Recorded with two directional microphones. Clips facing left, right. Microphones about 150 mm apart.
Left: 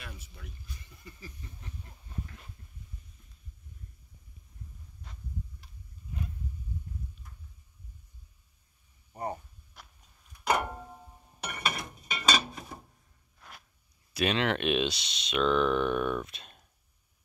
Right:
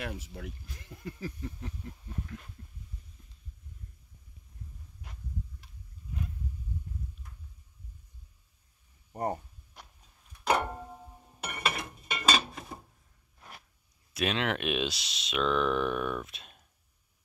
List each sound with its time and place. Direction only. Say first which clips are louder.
0.0 s speech: right 9 dB; 70° right (ahead or behind); by 1.5 s 85° right
2.2 s speech: right 6 dB; centre (ahead or behind)
9.1 s speech: right 3 dB; 45° right (ahead or behind)
10.7 s music: right 2 dB; 5° right (ahead or behind)
11.4 s a sound: right 1 dB; centre (ahead or behind)
14.1 s speech: left 2 dB; centre (ahead or behind)